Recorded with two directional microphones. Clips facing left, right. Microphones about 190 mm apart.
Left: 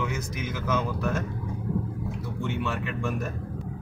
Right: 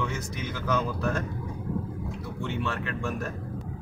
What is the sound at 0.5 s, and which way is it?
Speech, 5° left (ahead or behind).